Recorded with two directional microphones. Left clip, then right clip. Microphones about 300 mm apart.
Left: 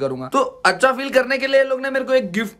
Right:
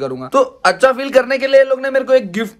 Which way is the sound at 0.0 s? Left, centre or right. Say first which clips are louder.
Right 4 dB; centre.